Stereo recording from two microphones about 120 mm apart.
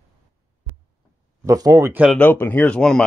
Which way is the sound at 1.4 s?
30° right (ahead or behind).